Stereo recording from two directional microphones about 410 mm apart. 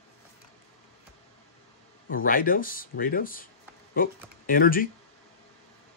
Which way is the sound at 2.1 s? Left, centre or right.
Centre.